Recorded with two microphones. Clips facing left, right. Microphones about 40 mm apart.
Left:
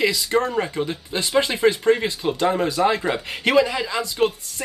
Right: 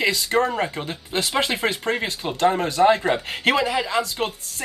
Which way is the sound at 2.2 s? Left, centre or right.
Centre.